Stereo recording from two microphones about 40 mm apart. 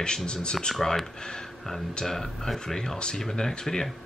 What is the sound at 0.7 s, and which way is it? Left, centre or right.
Speech, centre.